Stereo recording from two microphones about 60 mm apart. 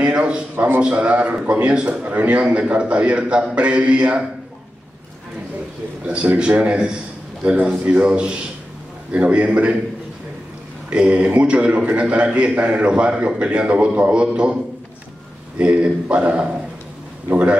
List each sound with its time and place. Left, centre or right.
0.0 s a man's voice: centre
0.6 s a man's voice: right
6.3 s a man's voice: right
10.9 s a man's voice: centre